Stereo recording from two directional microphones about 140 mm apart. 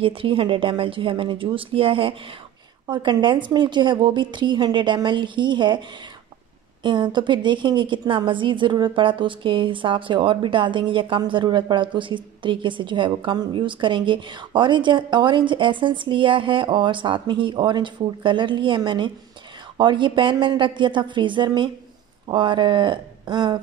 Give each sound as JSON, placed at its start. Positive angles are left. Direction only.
{"t": 0.0, "sound": "a woman's voice", "side_deg": -40}